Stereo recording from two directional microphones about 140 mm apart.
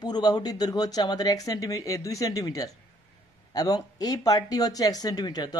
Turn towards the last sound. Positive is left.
turn(degrees=25)  # may be behind; listen again after turning